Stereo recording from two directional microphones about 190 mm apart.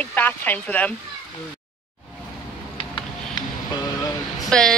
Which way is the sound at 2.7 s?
25° left (ahead or behind).